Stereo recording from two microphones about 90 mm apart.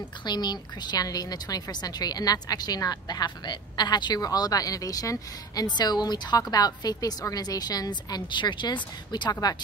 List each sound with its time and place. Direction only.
0.2 s a woman's voice: 55° left (ahead or behind)